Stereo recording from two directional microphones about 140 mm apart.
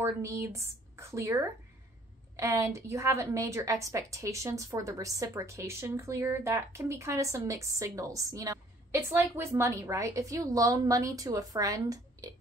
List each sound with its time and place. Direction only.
0.0 s a woman's voice: 20° right (ahead or behind)